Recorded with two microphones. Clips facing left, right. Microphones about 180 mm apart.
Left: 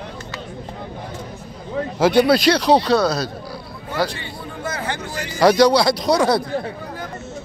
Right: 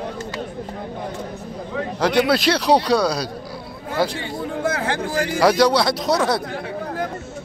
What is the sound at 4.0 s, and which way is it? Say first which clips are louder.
Speech: right 1 dB; 20° right (ahead or behind).